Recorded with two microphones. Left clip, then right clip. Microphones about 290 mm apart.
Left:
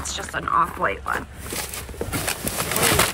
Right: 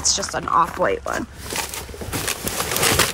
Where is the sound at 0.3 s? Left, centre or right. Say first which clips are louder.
Left 1 dB; centre.